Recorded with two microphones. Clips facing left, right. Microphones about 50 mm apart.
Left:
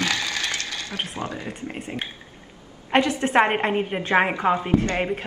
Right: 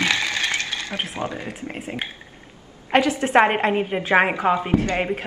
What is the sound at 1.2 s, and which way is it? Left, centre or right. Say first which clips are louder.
Speech: right 2 dB; right.